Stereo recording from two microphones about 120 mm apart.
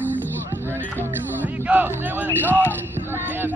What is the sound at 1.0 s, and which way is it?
Music, 15° right (ahead or behind).